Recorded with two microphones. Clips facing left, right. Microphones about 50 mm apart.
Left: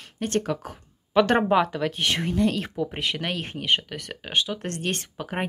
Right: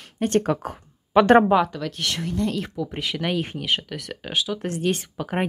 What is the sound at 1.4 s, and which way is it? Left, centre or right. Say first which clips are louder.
Speech: right 2 dB; centre.